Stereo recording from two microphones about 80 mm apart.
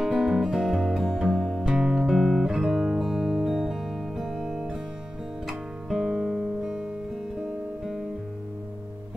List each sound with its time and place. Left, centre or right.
0.0 s music: centre
5.5 s guitar: centre